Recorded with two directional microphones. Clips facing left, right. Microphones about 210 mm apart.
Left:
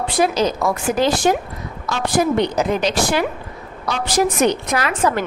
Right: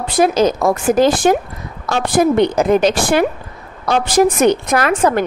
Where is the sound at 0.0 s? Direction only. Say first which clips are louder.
Right 4 dB; 45° right (ahead or behind).